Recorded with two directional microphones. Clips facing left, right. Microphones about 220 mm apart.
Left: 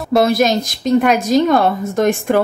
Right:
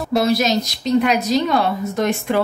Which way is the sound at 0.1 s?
50° left (ahead or behind).